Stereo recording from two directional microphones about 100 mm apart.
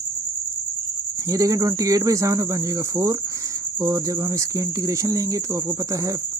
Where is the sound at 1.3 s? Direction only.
35° right (ahead or behind).